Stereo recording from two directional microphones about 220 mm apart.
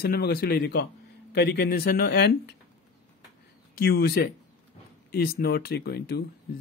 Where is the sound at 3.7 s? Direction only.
45° left (ahead or behind).